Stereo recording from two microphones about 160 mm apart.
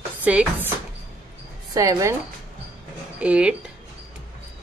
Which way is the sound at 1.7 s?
20° right (ahead or behind).